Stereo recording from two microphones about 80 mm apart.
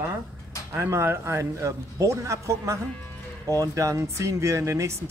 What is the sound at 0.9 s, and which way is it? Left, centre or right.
Speech, right.